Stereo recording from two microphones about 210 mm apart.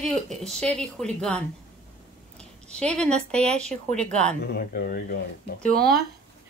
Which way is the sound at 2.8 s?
5° left (ahead or behind).